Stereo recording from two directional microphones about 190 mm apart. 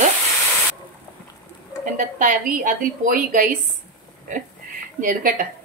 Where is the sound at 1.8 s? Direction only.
40° right (ahead or behind).